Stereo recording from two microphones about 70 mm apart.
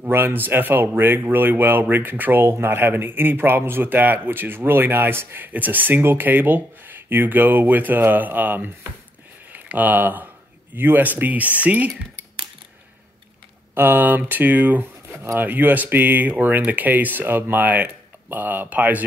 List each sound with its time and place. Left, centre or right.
0.0 s a man's voice: right
13.7 s speech: right